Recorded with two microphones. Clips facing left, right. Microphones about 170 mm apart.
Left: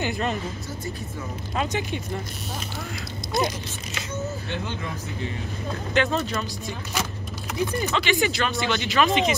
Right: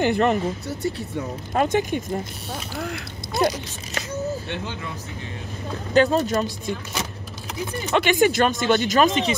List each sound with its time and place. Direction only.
0.0 s speech: 60° right (ahead or behind)
1.5 s speech: 50° right (ahead or behind)
5.9 s speech: 40° right (ahead or behind)
7.9 s speech: 50° right (ahead or behind)